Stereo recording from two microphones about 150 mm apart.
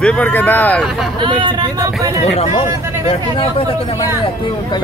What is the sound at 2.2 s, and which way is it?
Speech, 45° left (ahead or behind).